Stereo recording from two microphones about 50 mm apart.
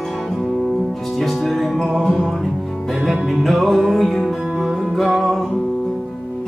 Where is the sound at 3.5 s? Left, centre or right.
Centre.